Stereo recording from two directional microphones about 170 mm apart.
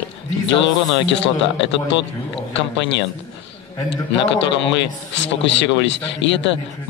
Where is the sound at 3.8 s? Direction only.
90° left.